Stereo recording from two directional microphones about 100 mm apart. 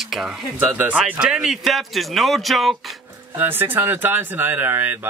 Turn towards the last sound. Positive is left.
turn(degrees=-20)  # may be behind; listen again after turning